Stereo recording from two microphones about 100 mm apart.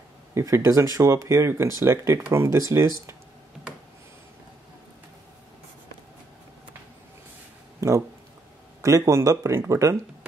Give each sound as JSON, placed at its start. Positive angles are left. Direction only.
{"t": 0.3, "sound": "speech", "side_deg": -30}
{"t": 8.8, "sound": "speech", "side_deg": -30}